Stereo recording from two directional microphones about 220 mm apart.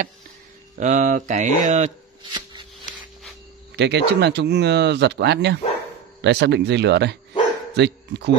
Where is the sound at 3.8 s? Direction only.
50° right (ahead or behind).